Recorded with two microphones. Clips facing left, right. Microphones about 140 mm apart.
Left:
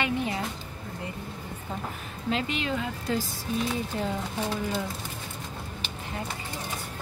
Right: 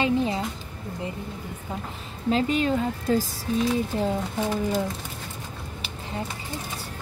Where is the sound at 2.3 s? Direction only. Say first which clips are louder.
Right 6 dB; 40° right (ahead or behind).